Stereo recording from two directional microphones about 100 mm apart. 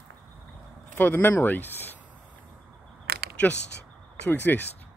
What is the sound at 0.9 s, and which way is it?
Speech, 20° left (ahead or behind).